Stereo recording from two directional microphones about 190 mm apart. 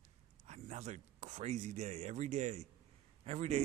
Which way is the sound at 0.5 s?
40° right (ahead or behind).